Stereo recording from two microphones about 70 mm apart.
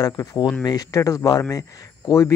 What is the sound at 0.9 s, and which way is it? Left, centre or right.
Speech, left.